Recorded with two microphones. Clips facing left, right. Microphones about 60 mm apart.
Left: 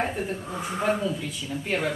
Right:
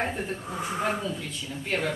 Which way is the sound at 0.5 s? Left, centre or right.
Centre.